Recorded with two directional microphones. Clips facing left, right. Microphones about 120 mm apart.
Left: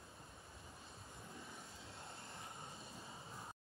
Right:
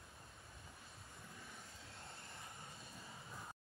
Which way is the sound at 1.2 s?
20° left (ahead or behind).